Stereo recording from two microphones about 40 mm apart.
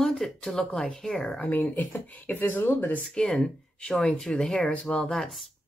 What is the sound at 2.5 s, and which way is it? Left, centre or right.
Speech, left.